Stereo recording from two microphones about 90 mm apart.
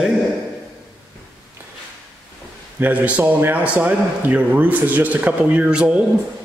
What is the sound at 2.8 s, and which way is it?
A man's voice, 15° right (ahead or behind).